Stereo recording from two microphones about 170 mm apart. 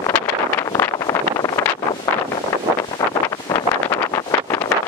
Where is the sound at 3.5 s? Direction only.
15° left (ahead or behind).